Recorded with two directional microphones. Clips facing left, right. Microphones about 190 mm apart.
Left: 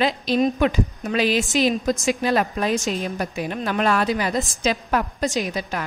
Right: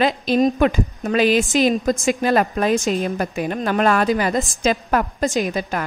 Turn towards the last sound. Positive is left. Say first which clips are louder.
# right 4 dB
turn(degrees=-50)  # may be behind; listen again after turning